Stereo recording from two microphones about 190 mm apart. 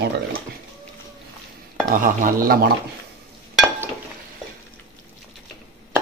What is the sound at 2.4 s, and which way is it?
Speech, 50° right (ahead or behind).